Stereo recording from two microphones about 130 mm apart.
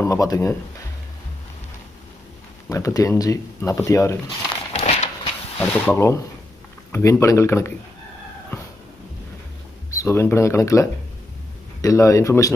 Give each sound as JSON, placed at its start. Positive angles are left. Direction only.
{"t": 0.0, "sound": "speech", "side_deg": 25}
{"t": 2.7, "sound": "speech", "side_deg": 25}
{"t": 4.7, "sound": "a sound", "side_deg": 50}
{"t": 5.6, "sound": "speech", "side_deg": 10}
{"t": 9.8, "sound": "speech", "side_deg": 20}